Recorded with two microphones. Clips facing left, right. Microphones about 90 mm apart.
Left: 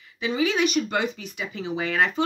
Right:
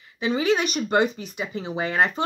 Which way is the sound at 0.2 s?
30° right (ahead or behind).